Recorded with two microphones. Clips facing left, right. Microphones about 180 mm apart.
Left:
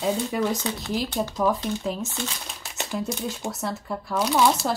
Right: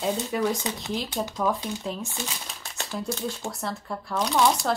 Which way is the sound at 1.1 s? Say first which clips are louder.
Left 2 dB; centre (ahead or behind).